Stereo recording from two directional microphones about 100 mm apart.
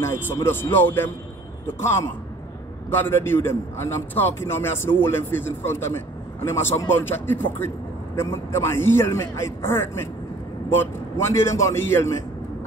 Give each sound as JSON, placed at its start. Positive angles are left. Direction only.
{"t": 0.0, "sound": "a man's voice", "side_deg": 25}